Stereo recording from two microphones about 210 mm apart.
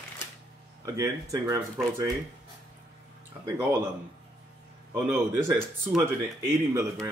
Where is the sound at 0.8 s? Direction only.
15° right (ahead or behind).